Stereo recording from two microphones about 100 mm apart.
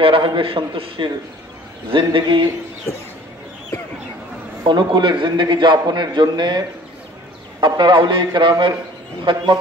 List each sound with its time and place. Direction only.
0.0 s a man's voice: 65° right (ahead or behind)
4.6 s a man's voice: 50° right (ahead or behind)
7.6 s a man's voice: 50° right (ahead or behind)